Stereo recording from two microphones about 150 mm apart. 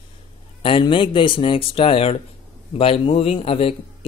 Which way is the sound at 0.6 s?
35° left (ahead or behind).